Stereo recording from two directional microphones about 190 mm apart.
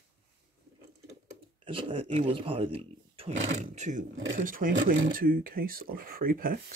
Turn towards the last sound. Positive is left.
turn(degrees=-50)  # may be behind; listen again after turning